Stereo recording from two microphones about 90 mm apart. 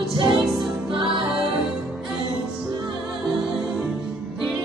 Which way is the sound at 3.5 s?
5° right (ahead or behind).